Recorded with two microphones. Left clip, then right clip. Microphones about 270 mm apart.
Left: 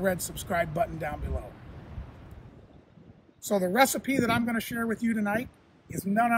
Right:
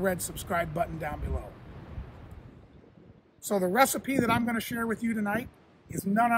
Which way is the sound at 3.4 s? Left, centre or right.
Centre.